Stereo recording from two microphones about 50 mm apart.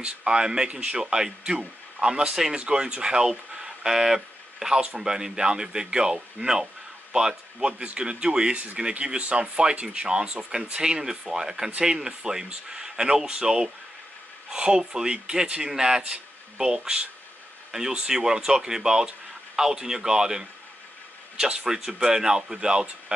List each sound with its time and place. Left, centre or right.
0.0 s speech: centre